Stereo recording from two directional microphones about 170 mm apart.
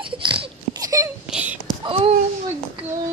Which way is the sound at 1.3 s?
5° right (ahead or behind).